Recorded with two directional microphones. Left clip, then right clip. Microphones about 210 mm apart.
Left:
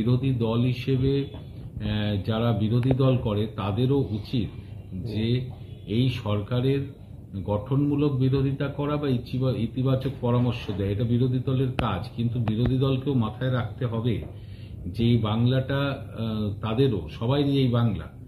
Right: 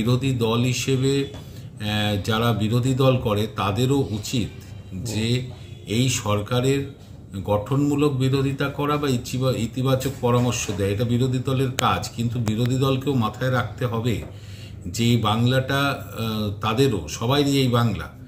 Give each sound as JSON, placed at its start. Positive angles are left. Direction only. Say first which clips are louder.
{"t": 0.0, "sound": "speech", "louder": "right 4 dB", "side_deg": -15}